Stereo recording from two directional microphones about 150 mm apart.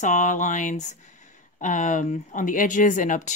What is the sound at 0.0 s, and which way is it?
Speech, 55° left (ahead or behind).